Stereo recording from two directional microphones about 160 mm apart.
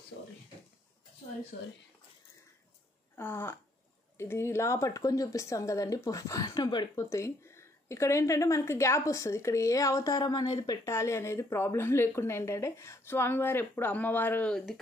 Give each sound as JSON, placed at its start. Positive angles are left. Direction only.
{"t": 3.2, "sound": "speech", "side_deg": 15}